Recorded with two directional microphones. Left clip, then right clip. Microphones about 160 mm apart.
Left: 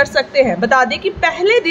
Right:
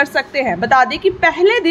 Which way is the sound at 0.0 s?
40° right (ahead or behind).